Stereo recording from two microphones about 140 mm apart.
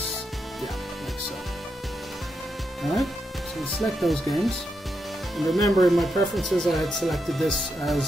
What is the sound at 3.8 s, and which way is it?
Speech, centre (ahead or behind).